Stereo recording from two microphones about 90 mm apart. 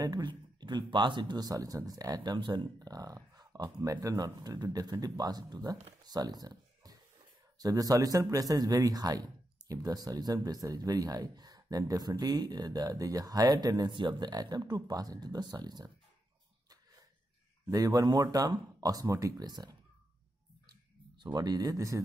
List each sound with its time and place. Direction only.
0.0 s speech: 45° right (ahead or behind)
0.3 s speech: 60° right (ahead or behind)
6.0 s a sound: 50° right (ahead or behind)
7.5 s speech: 45° right (ahead or behind)
13.9 s speech: 55° right (ahead or behind)
17.6 s speech: 40° right (ahead or behind)
21.2 s speech: 50° right (ahead or behind)